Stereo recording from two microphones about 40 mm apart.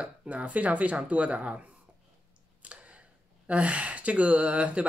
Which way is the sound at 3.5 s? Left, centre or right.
Right.